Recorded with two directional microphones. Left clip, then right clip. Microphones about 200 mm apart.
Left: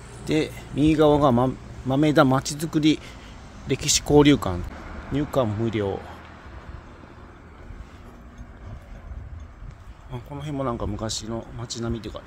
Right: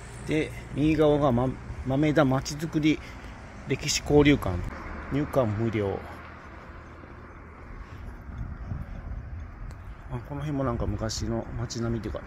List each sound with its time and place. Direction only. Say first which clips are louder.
0.2 s speech: left 4 dB; 30° left (ahead or behind); by 5.9 s 10° left (ahead or behind)
10.1 s speech: left 1 dB; 20° left (ahead or behind)